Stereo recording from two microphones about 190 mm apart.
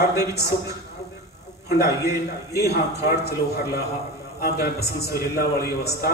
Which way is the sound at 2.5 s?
60° left (ahead or behind).